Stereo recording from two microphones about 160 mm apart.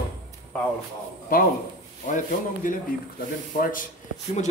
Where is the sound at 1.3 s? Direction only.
60° left (ahead or behind).